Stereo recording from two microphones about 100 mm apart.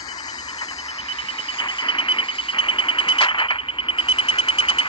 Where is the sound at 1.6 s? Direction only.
55° left (ahead or behind).